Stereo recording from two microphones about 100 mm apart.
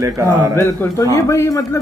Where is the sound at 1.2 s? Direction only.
30° left (ahead or behind).